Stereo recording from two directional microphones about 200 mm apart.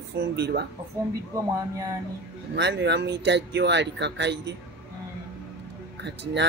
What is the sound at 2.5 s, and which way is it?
Speech, 60° right (ahead or behind).